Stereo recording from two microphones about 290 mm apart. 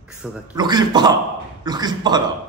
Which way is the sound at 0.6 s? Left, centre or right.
Centre.